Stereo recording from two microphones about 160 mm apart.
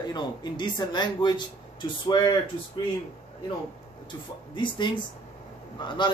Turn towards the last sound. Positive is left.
turn(degrees=30)  # may be behind; listen again after turning